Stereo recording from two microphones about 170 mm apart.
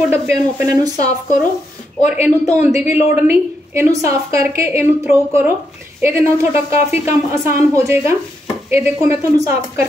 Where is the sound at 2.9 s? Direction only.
10° right (ahead or behind).